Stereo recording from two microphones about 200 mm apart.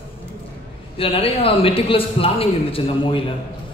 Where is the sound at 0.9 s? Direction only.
30° left (ahead or behind).